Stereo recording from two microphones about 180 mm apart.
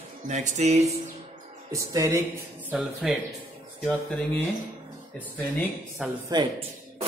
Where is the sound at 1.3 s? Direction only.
20° right (ahead or behind).